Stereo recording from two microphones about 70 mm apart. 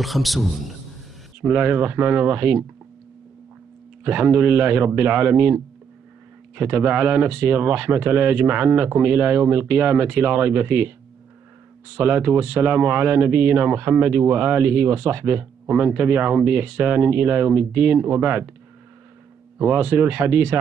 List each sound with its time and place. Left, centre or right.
0.0 s a man's voice: centre
1.4 s speech: right
4.0 s speech: right
12.0 s speech: right
19.6 s speech: right